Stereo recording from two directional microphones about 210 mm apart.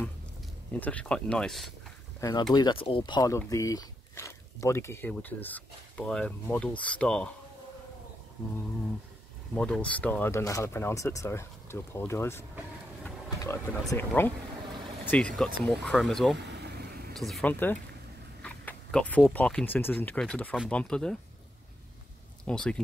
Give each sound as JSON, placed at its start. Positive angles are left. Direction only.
{"t": 0.7, "sound": "speech", "side_deg": 5}
{"t": 2.1, "sound": "speech", "side_deg": 15}
{"t": 9.6, "sound": "speech", "side_deg": 5}
{"t": 16.3, "sound": "vehicle", "side_deg": -55}
{"t": 17.1, "sound": "speech", "side_deg": 0}
{"t": 22.4, "sound": "speech", "side_deg": 5}